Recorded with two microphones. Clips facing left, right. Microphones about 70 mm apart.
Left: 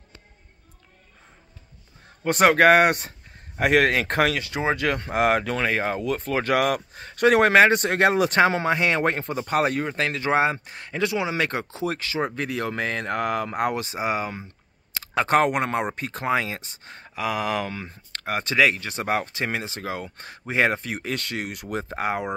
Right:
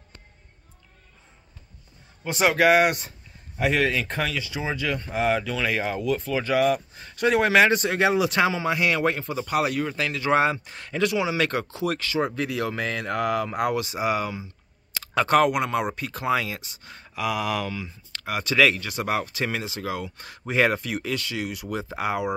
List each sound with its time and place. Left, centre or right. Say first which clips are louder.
2.2 s speech: left 4 dB; left
5.7 s speech: right 2 dB; left
7.5 s speech: left 2 dB; left
21.1 s speech: left 1 dB; left